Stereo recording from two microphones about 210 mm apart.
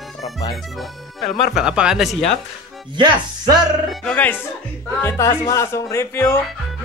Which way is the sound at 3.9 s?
5° left (ahead or behind).